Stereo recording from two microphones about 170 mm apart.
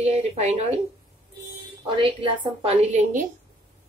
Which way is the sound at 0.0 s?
35° right (ahead or behind).